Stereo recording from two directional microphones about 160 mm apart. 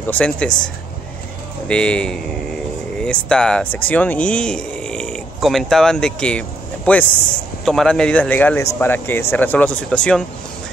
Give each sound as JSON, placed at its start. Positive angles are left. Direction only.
{"t": 0.0, "sound": "a man's voice", "side_deg": 10}
{"t": 1.7, "sound": "a man's voice", "side_deg": 5}